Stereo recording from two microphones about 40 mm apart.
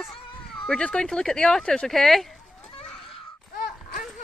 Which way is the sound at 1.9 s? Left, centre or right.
Centre.